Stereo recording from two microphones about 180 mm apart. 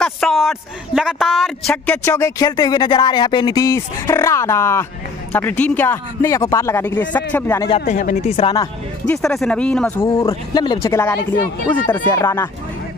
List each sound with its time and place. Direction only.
0.0 s a sound: centre (ahead or behind)
1.7 s speech: 10° left (ahead or behind)
7.8 s speech: 45° left (ahead or behind)
8.4 s speech: 25° left (ahead or behind)
9.0 s speech: 5° left (ahead or behind)
10.0 s speech: 20° left (ahead or behind)